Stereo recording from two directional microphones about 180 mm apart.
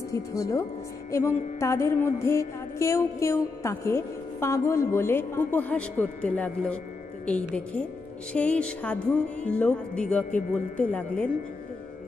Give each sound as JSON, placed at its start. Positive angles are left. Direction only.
{"t": 0.1, "sound": "music", "side_deg": 15}
{"t": 8.3, "sound": "music", "side_deg": 5}